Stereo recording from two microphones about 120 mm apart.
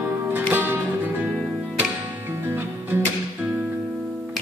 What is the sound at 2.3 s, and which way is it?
Music, 20° right (ahead or behind).